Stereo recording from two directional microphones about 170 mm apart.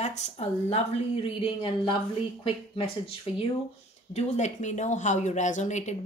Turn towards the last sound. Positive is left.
turn(degrees=45)  # may be behind; listen again after turning